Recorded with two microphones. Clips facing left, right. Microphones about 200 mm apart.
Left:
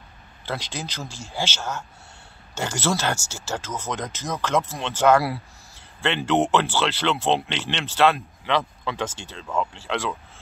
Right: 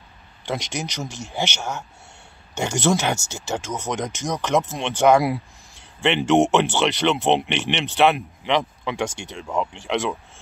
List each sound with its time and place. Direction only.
0.5 s speech: 15° right (ahead or behind)